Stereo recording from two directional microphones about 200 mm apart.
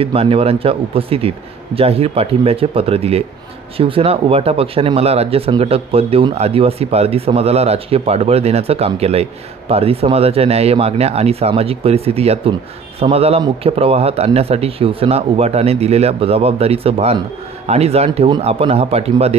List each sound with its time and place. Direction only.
0.0 s speech: 30° right (ahead or behind)